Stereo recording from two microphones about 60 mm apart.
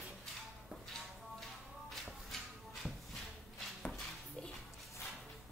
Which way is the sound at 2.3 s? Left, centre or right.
Centre.